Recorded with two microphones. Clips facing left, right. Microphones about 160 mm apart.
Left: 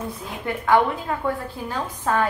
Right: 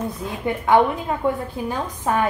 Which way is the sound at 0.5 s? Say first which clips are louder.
Right 2 dB; 20° right (ahead or behind).